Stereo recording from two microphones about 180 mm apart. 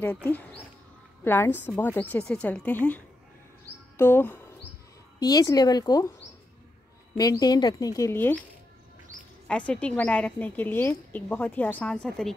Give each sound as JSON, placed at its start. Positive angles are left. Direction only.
{"t": 0.0, "sound": "a woman's voice", "side_deg": 10}
{"t": 3.9, "sound": "a sound", "side_deg": 10}
{"t": 5.2, "sound": "a woman's voice", "side_deg": 20}
{"t": 7.2, "sound": "a woman's voice", "side_deg": 20}
{"t": 9.5, "sound": "a woman's voice", "side_deg": 5}